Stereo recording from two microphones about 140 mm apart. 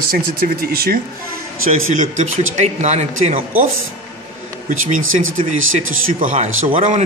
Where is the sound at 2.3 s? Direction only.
55° right (ahead or behind).